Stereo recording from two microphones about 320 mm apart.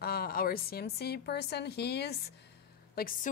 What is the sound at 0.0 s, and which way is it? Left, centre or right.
A woman's voice, left.